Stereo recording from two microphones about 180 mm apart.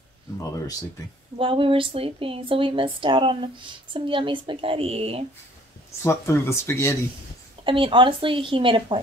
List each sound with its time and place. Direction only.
1.0 s speech: 20° left (ahead or behind)
1.4 s speech: 30° right (ahead or behind)
6.0 s speech: 15° left (ahead or behind)
7.6 s speech: 30° right (ahead or behind)